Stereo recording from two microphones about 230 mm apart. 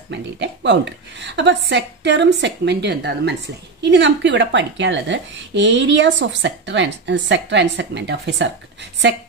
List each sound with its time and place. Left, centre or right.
0.1 s a woman's voice: right